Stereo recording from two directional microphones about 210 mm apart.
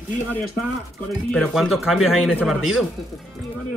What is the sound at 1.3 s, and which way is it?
Speech, centre (ahead or behind).